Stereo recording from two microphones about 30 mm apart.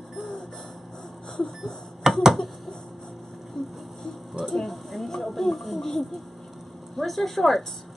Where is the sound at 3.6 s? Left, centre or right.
Left.